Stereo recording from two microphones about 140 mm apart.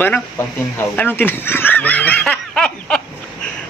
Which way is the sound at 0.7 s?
15° left (ahead or behind).